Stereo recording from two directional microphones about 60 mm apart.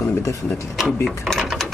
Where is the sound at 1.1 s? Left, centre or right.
Centre.